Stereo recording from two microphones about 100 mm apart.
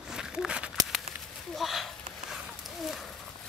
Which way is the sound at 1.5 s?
Centre (ahead or behind).